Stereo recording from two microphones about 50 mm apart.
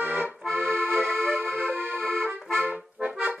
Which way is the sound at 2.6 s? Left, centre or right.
Right.